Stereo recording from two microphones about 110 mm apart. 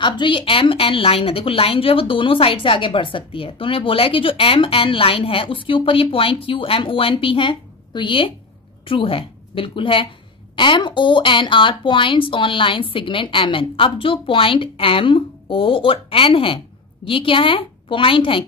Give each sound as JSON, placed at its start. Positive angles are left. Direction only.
{"t": 0.0, "sound": "a woman's voice", "side_deg": 45}